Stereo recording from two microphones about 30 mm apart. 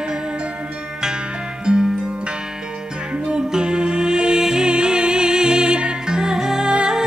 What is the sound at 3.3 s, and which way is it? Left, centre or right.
Music, right.